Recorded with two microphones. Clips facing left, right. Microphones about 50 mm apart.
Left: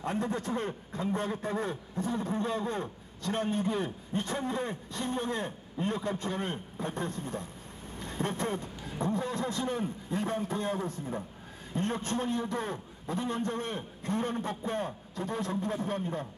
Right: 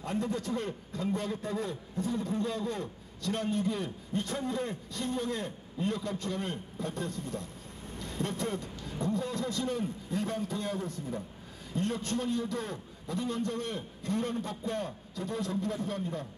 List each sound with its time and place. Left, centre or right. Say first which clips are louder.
0.0 s a man's voice: left 1 dB; left